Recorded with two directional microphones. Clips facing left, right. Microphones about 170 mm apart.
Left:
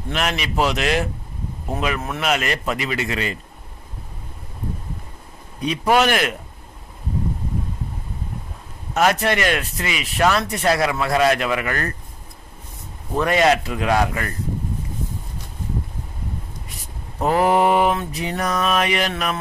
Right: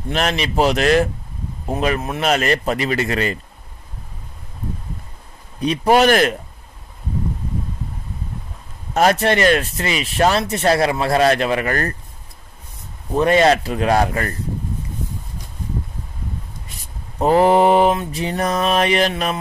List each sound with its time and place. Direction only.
0.1 s speech: 35° right (ahead or behind)
2.1 s speech: 35° right (ahead or behind)
5.7 s speech: 35° right (ahead or behind)
8.9 s speech: 30° right (ahead or behind)
13.1 s speech: 25° right (ahead or behind)
17.2 s mantra: 30° right (ahead or behind)
18.1 s speech: 30° right (ahead or behind)